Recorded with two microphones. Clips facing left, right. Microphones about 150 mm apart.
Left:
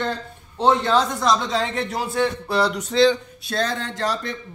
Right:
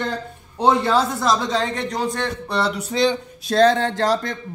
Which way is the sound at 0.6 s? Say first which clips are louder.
Right 1 dB; 10° right (ahead or behind).